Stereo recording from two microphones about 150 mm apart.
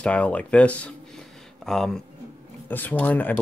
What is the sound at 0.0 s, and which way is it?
Speech, 10° left (ahead or behind).